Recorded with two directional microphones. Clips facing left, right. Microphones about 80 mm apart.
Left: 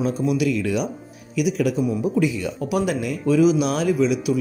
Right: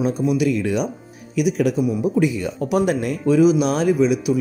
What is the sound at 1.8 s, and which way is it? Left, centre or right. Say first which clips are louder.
Speech: right 2 dB; centre.